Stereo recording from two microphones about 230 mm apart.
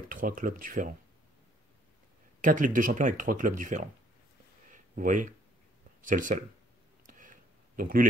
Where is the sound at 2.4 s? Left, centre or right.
Right.